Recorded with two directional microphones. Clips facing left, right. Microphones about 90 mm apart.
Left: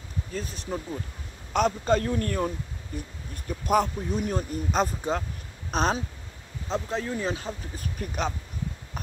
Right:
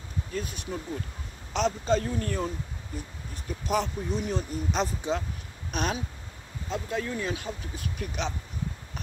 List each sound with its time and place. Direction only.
0.3 s speech: 35° left (ahead or behind)
1.5 s speech: 50° left (ahead or behind)